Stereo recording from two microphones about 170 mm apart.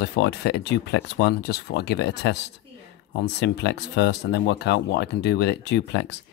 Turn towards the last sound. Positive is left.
turn(degrees=80)